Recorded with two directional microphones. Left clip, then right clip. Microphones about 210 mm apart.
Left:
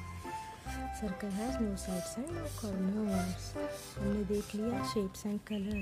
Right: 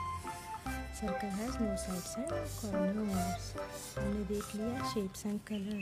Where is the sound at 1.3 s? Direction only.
15° left (ahead or behind).